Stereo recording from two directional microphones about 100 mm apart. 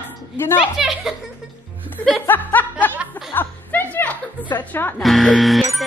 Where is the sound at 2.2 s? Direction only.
20° left (ahead or behind).